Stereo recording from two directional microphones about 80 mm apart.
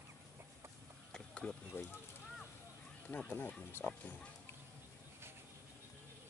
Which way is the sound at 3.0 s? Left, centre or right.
Centre.